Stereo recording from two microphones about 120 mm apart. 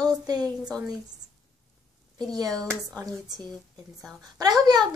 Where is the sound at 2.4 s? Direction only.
5° left (ahead or behind).